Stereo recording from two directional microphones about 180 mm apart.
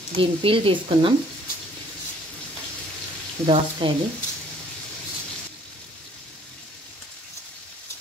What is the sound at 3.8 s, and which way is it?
Speech, 30° right (ahead or behind).